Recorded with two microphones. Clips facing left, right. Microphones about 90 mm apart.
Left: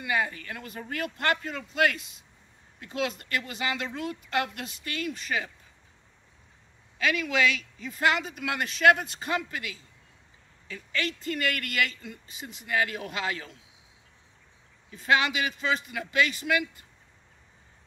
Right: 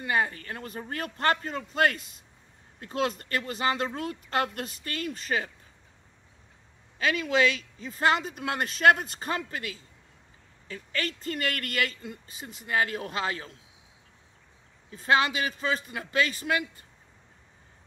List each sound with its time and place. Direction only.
0.0 s speech: 35° right (ahead or behind)
7.0 s speech: 35° right (ahead or behind)
14.9 s speech: 35° right (ahead or behind)